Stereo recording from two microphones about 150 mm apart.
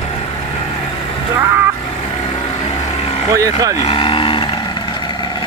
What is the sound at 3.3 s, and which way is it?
Speech, 20° right (ahead or behind).